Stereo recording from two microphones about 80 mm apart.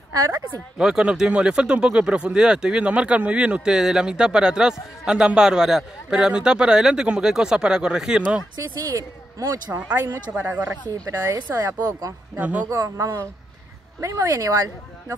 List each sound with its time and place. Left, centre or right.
0.1 s speech: right
0.7 s speech: centre
8.5 s speech: right
9.7 s speech: centre
11.5 s speech: right
12.4 s speech: centre
12.6 s speech: right